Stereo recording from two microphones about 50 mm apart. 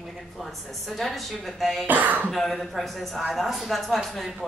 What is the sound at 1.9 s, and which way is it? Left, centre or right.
Speech, right.